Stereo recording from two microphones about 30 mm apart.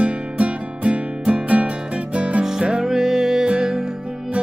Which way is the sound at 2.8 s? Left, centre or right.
Centre.